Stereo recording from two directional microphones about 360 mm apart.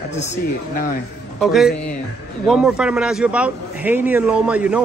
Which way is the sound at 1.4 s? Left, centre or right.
Centre.